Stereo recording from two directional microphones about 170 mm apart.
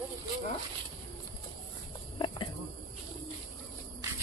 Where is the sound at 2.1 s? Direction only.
30° left (ahead or behind).